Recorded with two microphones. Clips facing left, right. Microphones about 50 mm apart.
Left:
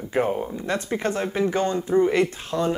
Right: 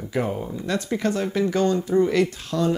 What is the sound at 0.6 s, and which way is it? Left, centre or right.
Speech, left.